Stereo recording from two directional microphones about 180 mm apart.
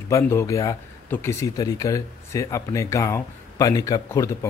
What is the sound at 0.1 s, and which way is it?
Speech, 15° left (ahead or behind).